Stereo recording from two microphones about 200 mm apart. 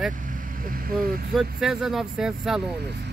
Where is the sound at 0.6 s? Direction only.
45° right (ahead or behind).